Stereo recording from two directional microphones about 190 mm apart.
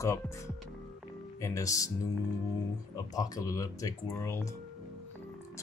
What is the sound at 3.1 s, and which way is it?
Speech, 20° left (ahead or behind).